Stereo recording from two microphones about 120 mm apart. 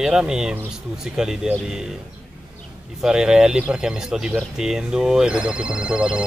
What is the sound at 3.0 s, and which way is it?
Speech, 5° right (ahead or behind).